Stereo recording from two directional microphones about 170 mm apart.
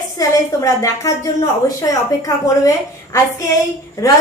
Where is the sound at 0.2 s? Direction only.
20° left (ahead or behind).